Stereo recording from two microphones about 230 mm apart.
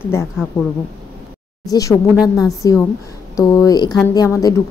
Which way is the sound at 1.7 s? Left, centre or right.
Centre.